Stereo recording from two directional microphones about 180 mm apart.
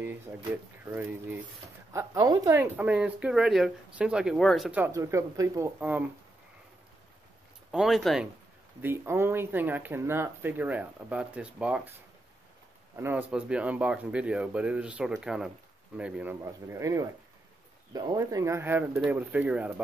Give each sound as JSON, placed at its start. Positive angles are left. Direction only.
{"t": 0.9, "sound": "speech", "side_deg": -10}
{"t": 2.0, "sound": "speech", "side_deg": -20}
{"t": 7.7, "sound": "speech", "side_deg": 0}
{"t": 8.8, "sound": "speech", "side_deg": -15}
{"t": 12.9, "sound": "speech", "side_deg": -10}